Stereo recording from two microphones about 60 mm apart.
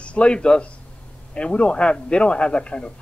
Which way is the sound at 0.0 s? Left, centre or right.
Centre.